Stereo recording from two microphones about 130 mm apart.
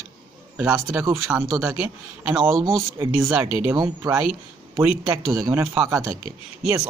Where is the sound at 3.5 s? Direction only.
15° right (ahead or behind).